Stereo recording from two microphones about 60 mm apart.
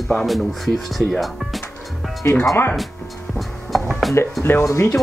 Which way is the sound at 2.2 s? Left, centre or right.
Left.